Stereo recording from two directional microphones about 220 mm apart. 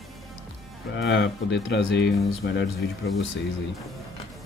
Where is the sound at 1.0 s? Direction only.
55° left (ahead or behind).